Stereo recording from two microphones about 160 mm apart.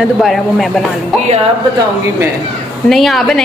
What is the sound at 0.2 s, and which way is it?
Speech, centre (ahead or behind).